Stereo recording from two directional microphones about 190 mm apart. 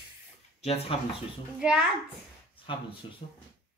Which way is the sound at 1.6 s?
5° right (ahead or behind).